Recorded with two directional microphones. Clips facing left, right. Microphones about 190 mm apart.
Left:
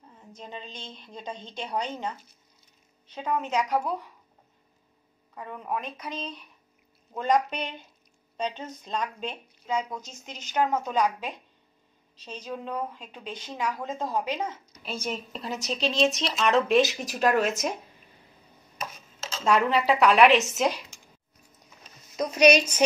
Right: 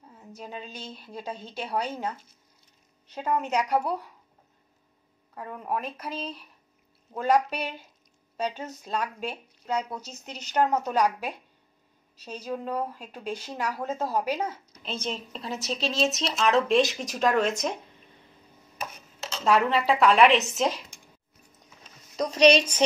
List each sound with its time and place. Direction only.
0.2 s a woman's voice: 10° right (ahead or behind)
5.3 s a woman's voice: 5° right (ahead or behind)
10.8 s a woman's voice: 10° right (ahead or behind)
14.7 s a woman's voice: 10° left (ahead or behind)
18.9 s a sound: 60° right (ahead or behind)
19.4 s speech: centre (ahead or behind)
22.1 s a woman's voice: 5° left (ahead or behind)